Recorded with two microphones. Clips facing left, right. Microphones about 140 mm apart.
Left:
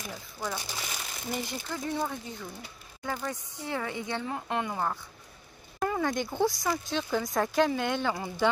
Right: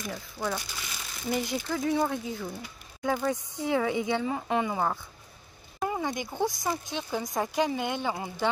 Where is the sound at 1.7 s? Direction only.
5° right (ahead or behind).